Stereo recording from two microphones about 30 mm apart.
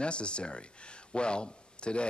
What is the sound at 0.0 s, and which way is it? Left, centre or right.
Speech, left.